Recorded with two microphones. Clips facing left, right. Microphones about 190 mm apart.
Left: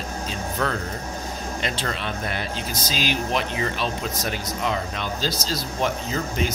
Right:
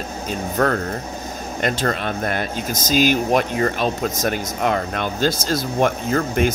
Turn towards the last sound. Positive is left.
turn(degrees=-55)  # may be behind; listen again after turning